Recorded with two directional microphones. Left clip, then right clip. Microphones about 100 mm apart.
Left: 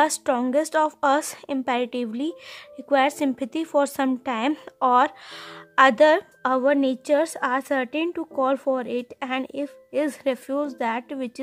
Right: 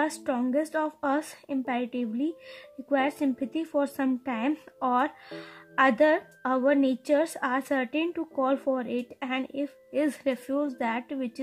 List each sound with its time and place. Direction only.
0.0 s speech: 40° left (ahead or behind)